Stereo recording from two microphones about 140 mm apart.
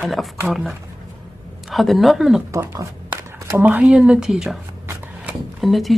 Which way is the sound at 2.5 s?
20° right (ahead or behind).